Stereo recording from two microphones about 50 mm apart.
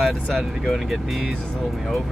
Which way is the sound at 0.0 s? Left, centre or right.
Centre.